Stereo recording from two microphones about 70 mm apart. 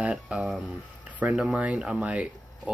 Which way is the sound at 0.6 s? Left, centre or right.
Right.